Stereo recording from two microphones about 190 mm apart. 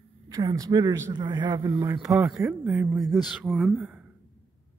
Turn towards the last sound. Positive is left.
turn(degrees=-5)  # may be behind; listen again after turning